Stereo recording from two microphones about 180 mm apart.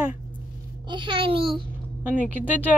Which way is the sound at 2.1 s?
10° right (ahead or behind).